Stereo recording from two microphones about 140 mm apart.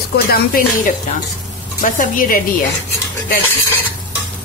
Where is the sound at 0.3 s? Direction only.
80° left.